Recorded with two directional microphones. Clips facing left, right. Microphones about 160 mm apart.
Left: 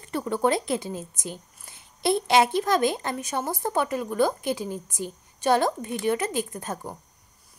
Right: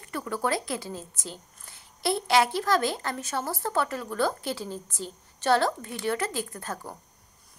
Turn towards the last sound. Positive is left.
turn(degrees=15)  # may be behind; listen again after turning